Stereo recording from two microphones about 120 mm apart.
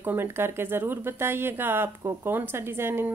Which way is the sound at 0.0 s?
20° right (ahead or behind).